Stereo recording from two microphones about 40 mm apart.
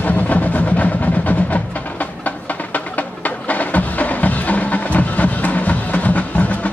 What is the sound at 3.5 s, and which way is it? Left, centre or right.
Music, left.